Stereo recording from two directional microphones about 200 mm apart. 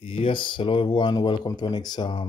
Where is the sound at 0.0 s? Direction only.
25° left (ahead or behind).